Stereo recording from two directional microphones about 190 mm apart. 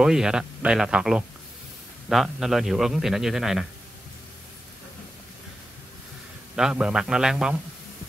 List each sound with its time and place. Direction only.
0.0 s a man's voice: 5° right (ahead or behind)
6.5 s a man's voice: 5° right (ahead or behind)